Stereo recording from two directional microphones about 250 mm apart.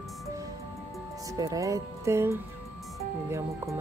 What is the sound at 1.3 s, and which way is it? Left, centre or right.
Speech, centre.